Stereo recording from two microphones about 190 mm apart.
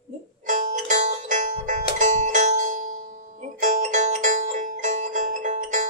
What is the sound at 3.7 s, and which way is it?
Music, 40° right (ahead or behind).